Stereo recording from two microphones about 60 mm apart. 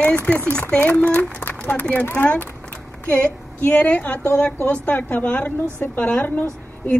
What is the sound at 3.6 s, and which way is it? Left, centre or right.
A woman's voice, left.